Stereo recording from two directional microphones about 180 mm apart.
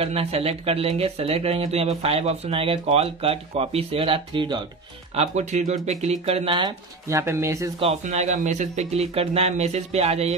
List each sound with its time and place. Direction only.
0.0 s speech: 30° right (ahead or behind)
5.1 s speech: 40° right (ahead or behind); by 7.7 s 15° right (ahead or behind)
7.8 s speech: 35° right (ahead or behind)